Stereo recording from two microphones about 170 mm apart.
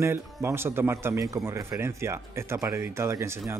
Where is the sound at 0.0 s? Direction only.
15° right (ahead or behind).